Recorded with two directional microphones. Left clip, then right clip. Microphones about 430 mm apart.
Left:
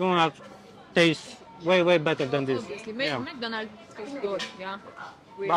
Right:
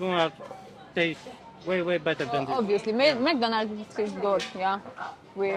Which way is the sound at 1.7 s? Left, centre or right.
Left.